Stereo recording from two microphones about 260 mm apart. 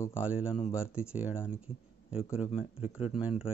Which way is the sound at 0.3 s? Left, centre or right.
Centre.